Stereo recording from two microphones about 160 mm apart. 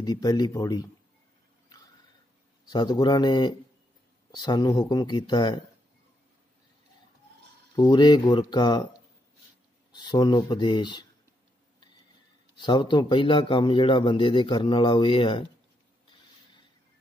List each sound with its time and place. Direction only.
0.0 s speech: 25° left (ahead or behind)
2.7 s speech: 25° left (ahead or behind)
7.7 s speech: 25° left (ahead or behind)
9.9 s speech: 25° left (ahead or behind)
12.5 s a man's voice: 30° left (ahead or behind)